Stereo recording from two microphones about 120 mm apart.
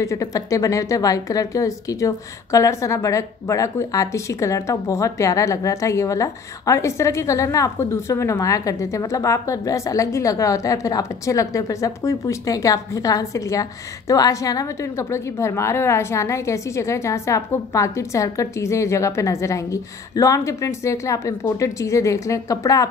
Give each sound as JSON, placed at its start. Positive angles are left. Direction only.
{"t": 0.0, "sound": "a woman's voice", "side_deg": 25}